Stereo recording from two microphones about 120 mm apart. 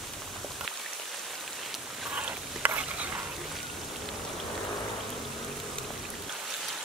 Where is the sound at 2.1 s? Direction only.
10° right (ahead or behind).